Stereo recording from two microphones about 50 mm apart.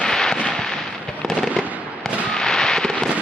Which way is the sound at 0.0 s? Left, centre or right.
Centre.